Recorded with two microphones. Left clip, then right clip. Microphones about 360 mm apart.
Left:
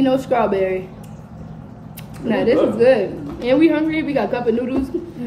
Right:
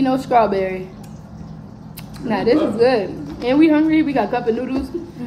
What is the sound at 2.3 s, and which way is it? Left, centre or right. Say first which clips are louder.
A woman's voice: left 1 dB; centre.